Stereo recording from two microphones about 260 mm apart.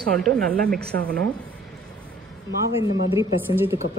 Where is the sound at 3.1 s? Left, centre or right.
Centre.